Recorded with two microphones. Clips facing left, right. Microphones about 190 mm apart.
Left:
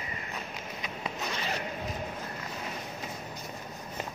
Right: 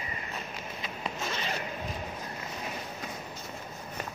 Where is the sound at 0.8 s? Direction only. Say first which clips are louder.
Even; 15° left (ahead or behind).